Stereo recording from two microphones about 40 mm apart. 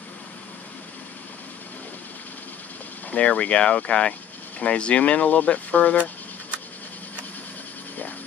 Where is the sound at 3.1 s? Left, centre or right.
Left.